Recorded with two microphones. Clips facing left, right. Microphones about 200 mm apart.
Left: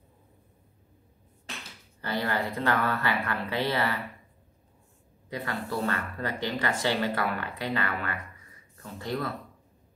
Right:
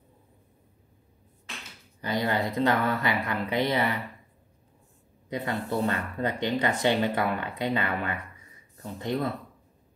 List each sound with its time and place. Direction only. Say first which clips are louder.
2.0 s speech: right 3 dB; 15° right (ahead or behind)
5.3 s speech: right 3 dB; 20° right (ahead or behind)